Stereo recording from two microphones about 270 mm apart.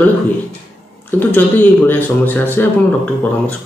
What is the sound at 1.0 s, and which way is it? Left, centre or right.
Speech, centre.